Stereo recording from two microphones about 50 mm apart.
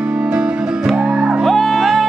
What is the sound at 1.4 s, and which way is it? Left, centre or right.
Music, centre.